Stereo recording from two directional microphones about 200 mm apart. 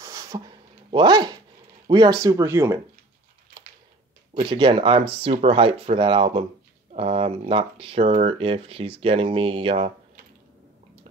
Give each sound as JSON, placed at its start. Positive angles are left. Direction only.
{"t": 0.0, "sound": "a sound", "side_deg": -15}
{"t": 0.9, "sound": "speech", "side_deg": -20}
{"t": 4.4, "sound": "speech", "side_deg": -25}